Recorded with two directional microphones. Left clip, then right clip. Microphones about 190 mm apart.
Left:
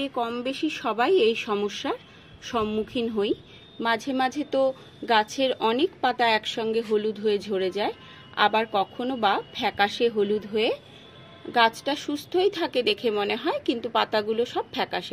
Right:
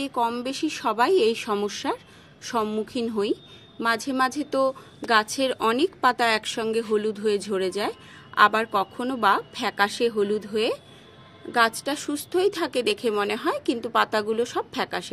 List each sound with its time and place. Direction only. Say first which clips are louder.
0.0 s a woman's voice: right 2 dB; 10° right (ahead or behind)